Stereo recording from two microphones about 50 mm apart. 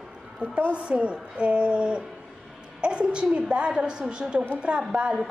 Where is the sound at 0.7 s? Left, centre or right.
Right.